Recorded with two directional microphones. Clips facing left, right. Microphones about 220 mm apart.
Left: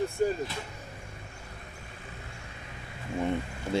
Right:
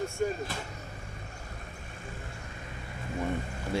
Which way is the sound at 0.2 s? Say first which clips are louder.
Left 3 dB; 40° left (ahead or behind).